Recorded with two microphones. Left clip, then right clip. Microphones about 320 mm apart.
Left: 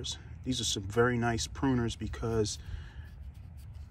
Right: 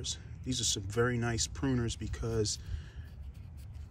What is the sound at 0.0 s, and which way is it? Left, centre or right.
Speech, centre.